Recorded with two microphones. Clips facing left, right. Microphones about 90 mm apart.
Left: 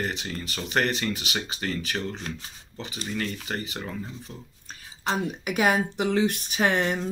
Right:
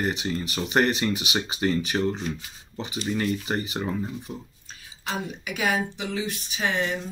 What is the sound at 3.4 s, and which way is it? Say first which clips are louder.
Speech: right 5 dB; 20° right (ahead or behind).